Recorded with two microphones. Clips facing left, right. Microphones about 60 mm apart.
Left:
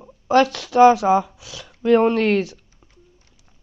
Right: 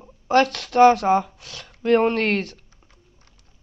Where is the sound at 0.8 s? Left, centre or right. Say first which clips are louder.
Left 2 dB; centre.